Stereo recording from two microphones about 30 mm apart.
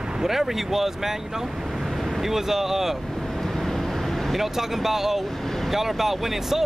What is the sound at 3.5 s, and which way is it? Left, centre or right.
Vehicle, centre.